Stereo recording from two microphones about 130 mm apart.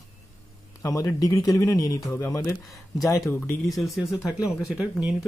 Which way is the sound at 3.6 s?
Centre (ahead or behind).